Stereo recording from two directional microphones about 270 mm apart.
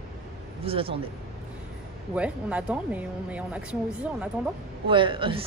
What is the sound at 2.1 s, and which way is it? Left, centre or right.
Speech, centre.